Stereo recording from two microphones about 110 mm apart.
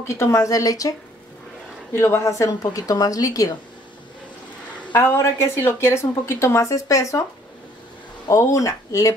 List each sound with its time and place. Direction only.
0.0 s a woman's voice: 25° left (ahead or behind)
4.9 s a woman's voice: 25° left (ahead or behind)
8.3 s a woman's voice: 30° left (ahead or behind)